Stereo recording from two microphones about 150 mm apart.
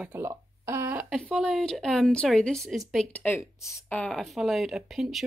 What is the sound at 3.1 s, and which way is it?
Speech, 15° left (ahead or behind).